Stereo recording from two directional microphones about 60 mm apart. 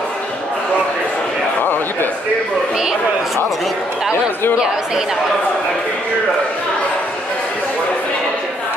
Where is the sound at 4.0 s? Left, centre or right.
Centre.